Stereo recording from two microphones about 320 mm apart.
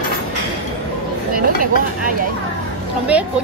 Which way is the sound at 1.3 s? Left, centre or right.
Right.